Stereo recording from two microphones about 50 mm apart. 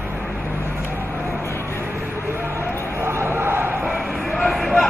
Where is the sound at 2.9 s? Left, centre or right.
Right.